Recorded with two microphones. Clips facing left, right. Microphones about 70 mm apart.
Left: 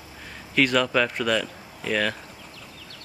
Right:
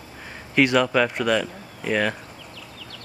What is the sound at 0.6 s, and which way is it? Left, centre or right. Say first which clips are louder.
Speech: right 2 dB; centre.